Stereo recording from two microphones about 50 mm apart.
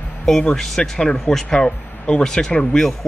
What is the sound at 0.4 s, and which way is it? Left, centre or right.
Speech, centre.